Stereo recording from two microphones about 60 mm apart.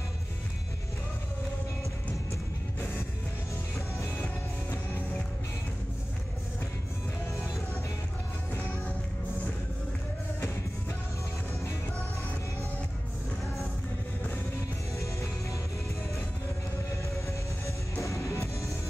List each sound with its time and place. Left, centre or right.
17.3 s music: left